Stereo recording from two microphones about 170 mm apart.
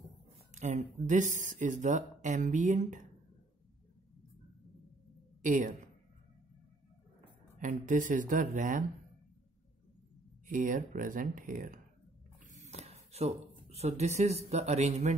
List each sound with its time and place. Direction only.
0.6 s speech: 45° right (ahead or behind)
5.4 s a woman's voice: 50° right (ahead or behind)
7.5 s speech: 50° right (ahead or behind)
10.5 s speech: 50° right (ahead or behind)
12.4 s speech: 40° right (ahead or behind)